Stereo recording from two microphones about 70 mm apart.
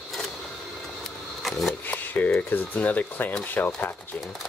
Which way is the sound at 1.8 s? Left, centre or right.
Left.